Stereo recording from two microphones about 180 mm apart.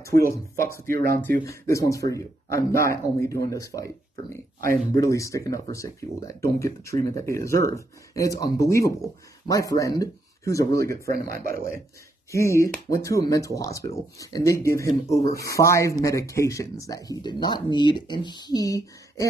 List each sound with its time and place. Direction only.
0.3 s speech: 15° left (ahead or behind)
11.3 s speech: 50° right (ahead or behind)
12.3 s speech: 15° left (ahead or behind)